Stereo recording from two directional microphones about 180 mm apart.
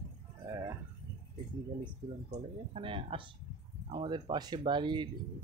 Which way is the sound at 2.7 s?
30° right (ahead or behind).